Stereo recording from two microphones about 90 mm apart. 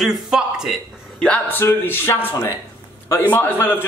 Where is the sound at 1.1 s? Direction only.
15° left (ahead or behind).